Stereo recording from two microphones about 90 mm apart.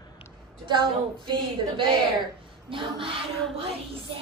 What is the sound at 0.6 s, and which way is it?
A woman's voice, 60° right (ahead or behind).